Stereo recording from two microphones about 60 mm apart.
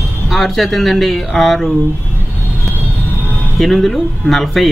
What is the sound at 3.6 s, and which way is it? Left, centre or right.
Speech, centre.